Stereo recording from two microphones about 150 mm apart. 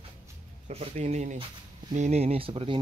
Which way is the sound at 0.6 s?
50° right (ahead or behind).